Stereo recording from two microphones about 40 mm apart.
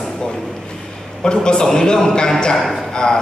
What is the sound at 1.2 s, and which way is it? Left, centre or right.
A man's voice, centre.